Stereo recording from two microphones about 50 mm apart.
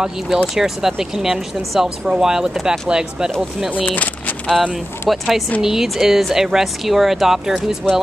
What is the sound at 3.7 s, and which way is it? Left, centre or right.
Vehicle, left.